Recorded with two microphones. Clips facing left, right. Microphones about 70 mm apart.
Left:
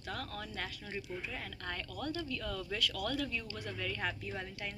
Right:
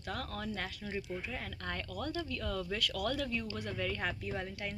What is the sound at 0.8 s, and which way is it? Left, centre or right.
Speech, centre.